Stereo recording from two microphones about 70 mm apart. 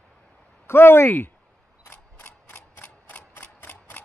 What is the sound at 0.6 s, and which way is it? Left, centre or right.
Speech, left.